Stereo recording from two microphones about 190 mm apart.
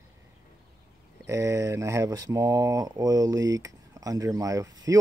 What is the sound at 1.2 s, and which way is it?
Speech, 15° right (ahead or behind).